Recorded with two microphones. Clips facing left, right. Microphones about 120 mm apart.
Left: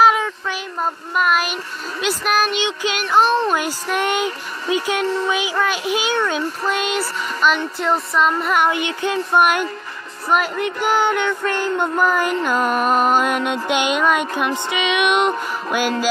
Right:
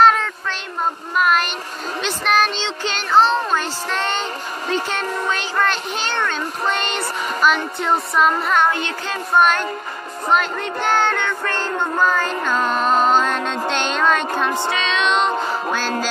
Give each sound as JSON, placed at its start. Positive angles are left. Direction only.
{"t": 0.0, "sound": "a sound", "side_deg": 10}
{"t": 2.0, "sound": "speech", "side_deg": 5}
{"t": 6.7, "sound": "music", "side_deg": 5}
{"t": 8.7, "sound": "speech", "side_deg": 15}